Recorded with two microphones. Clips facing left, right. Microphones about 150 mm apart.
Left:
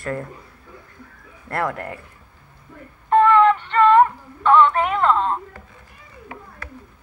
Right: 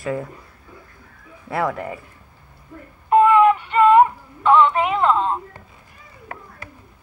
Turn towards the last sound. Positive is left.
turn(degrees=-55)  # may be behind; listen again after turning